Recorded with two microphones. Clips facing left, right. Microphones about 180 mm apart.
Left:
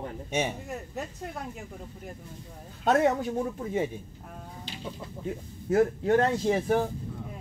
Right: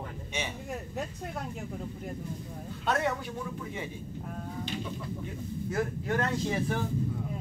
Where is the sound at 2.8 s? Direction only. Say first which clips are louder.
Left 7 dB; 45° left (ahead or behind).